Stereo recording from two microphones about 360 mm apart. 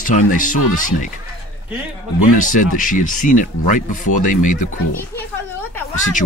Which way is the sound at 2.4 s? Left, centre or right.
Left.